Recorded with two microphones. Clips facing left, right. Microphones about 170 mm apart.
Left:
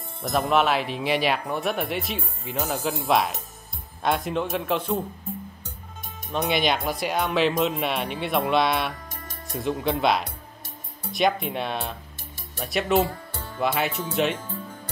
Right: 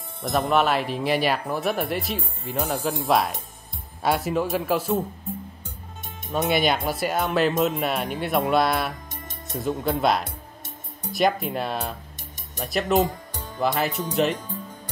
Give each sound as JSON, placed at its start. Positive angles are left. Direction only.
{"t": 0.2, "sound": "speech", "side_deg": 0}
{"t": 6.2, "sound": "speech", "side_deg": 0}
{"t": 13.0, "sound": "music", "side_deg": -15}
{"t": 13.6, "sound": "speech", "side_deg": 0}